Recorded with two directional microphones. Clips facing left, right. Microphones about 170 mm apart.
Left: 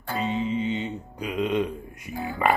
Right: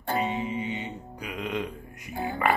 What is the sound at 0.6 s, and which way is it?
Music, 25° left (ahead or behind).